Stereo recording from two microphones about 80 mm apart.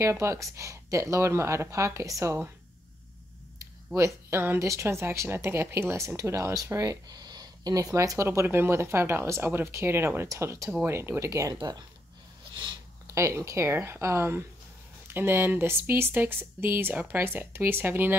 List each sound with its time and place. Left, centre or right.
0.0 s speech: right
3.5 s a sound: right
4.3 s speech: right
13.0 s speech: right